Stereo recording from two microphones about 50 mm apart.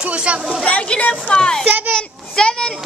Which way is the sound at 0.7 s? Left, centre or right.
Left.